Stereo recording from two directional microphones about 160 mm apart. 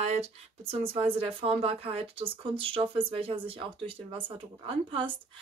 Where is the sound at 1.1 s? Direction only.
35° right (ahead or behind).